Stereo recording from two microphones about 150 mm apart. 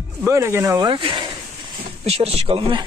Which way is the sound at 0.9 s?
35° right (ahead or behind).